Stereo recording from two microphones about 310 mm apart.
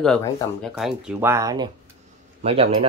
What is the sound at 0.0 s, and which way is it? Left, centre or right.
Speech, centre.